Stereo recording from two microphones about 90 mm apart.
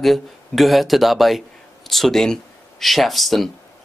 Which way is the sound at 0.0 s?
Centre (ahead or behind).